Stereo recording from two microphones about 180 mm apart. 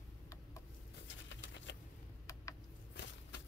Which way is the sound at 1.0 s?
85° left.